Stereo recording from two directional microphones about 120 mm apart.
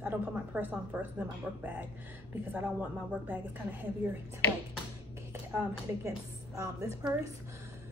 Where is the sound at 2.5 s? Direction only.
15° right (ahead or behind).